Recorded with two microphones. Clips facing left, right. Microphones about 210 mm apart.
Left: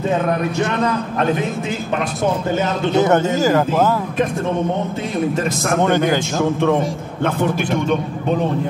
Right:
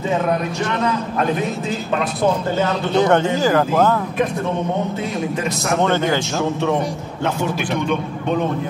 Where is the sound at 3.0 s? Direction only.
5° left (ahead or behind).